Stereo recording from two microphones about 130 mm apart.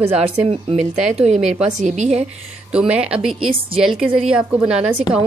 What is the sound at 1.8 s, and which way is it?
Speech, 70° right (ahead or behind).